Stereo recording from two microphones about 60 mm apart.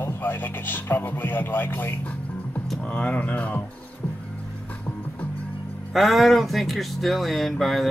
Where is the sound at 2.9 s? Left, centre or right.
Left.